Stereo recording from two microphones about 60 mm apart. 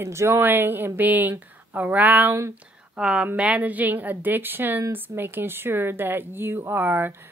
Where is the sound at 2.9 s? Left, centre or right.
Centre; by 7.3 s right.